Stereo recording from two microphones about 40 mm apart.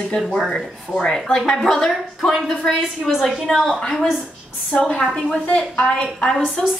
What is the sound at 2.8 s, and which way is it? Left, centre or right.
A woman's voice, centre.